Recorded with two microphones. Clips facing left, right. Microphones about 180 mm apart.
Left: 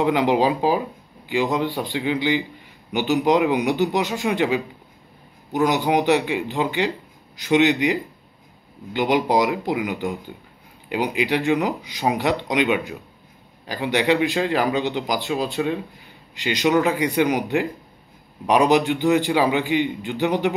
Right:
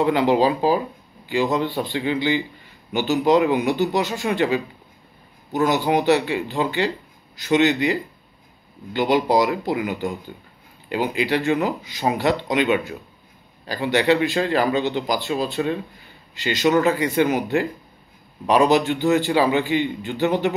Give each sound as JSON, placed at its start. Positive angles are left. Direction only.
{"t": 0.0, "sound": "speech", "side_deg": 15}